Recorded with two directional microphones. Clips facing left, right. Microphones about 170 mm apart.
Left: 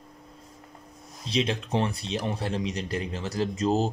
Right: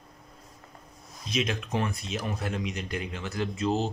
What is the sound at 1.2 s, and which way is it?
Speech, 30° left (ahead or behind).